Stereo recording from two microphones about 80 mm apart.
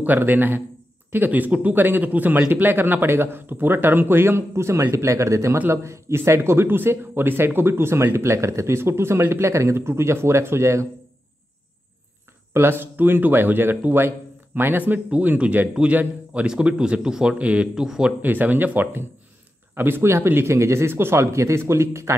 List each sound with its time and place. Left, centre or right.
0.0 s a man's voice: right
12.5 s a man's voice: right; by 18.1 s centre
18.2 s a man's voice: right